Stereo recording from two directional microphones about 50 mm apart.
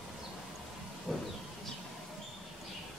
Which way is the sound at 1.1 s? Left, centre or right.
Centre.